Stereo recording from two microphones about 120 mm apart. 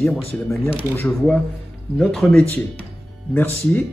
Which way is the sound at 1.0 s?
Centre (ahead or behind).